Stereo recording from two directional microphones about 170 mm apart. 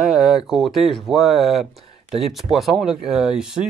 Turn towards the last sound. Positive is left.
turn(degrees=-5)  # may be behind; listen again after turning